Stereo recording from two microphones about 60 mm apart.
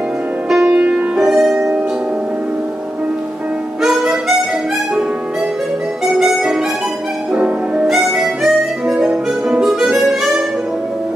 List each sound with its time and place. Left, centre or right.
0.7 s music: centre
3.8 s harmonica: centre
6.0 s music: centre
7.3 s music: centre
7.8 s harmonica: centre
8.9 s music: centre
9.7 s harmonica: centre